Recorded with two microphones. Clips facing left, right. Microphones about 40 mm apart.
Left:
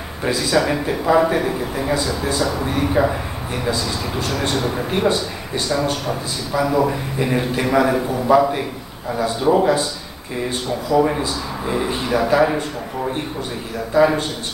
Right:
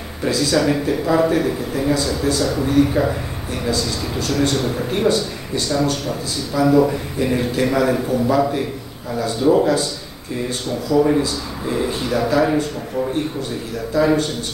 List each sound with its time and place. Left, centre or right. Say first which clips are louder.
0.2 s a man's voice: right 1 dB; centre
10.9 s a man's voice: right 2 dB; centre
13.9 s a man's voice: left 1 dB; centre